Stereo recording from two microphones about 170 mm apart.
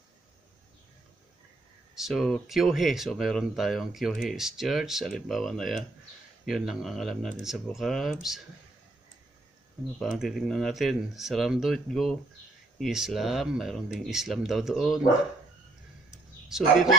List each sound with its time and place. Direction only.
2.0 s speech: centre (ahead or behind)
9.9 s speech: centre (ahead or behind)
16.4 s speech: 5° right (ahead or behind)